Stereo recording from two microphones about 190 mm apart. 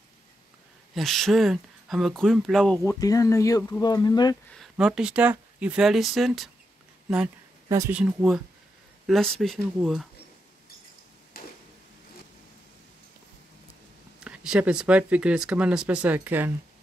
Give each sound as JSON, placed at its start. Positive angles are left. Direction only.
{"t": 0.9, "sound": "speech", "side_deg": 0}
{"t": 2.8, "sound": "speech", "side_deg": 15}
{"t": 4.6, "sound": "speech", "side_deg": -5}
{"t": 7.6, "sound": "speech", "side_deg": -15}
{"t": 8.0, "sound": "speech", "side_deg": -5}
{"t": 11.3, "sound": "a sound", "side_deg": 50}
{"t": 14.2, "sound": "speech", "side_deg": -5}